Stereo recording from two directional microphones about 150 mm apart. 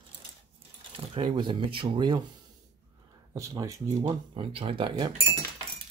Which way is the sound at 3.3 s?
25° right (ahead or behind).